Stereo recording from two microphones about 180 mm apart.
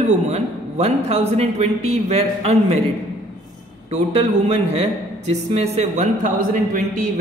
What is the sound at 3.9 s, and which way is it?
A man's voice, 35° right (ahead or behind).